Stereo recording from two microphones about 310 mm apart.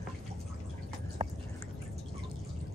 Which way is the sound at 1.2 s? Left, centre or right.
Right.